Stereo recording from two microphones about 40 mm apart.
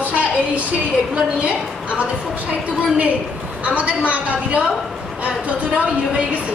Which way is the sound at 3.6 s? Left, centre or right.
Right.